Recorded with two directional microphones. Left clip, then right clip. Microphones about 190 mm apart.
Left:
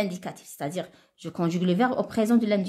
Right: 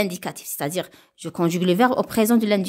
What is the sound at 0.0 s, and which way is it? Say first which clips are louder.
A woman's voice: right 5 dB; 40° right (ahead or behind).